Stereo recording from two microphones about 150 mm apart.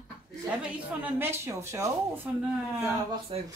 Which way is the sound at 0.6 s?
10° right (ahead or behind).